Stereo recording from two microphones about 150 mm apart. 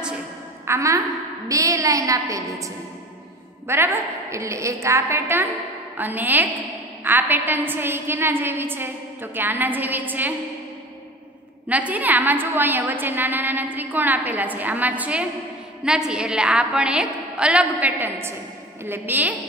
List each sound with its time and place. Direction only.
0.7 s a woman's voice: 20° right (ahead or behind)
3.6 s a woman's voice: 15° right (ahead or behind)
11.7 s a woman's voice: 10° right (ahead or behind)